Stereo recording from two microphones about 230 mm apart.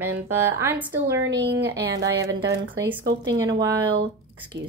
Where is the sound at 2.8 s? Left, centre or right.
Centre.